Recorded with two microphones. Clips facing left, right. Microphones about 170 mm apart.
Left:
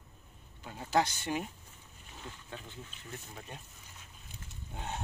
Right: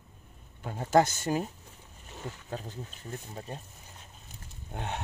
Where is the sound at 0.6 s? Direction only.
50° right (ahead or behind).